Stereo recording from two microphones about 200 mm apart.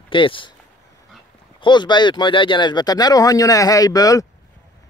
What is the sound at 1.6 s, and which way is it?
Speech, 20° left (ahead or behind).